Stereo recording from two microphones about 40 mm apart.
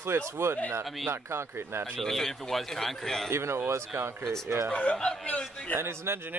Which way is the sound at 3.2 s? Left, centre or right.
Right.